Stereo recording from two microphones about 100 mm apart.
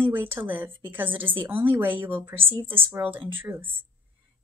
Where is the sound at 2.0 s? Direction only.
60° right (ahead or behind).